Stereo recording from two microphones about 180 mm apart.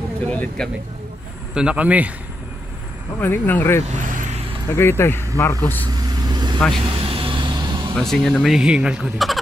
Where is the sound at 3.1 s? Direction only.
10° left (ahead or behind).